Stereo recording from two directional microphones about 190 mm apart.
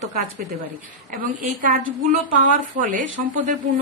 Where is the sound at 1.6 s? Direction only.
45° right (ahead or behind).